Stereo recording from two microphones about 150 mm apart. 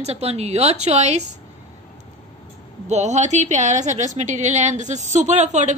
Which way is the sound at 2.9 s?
50° right (ahead or behind).